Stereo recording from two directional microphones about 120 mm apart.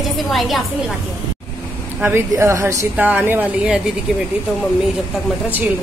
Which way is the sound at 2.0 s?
20° right (ahead or behind).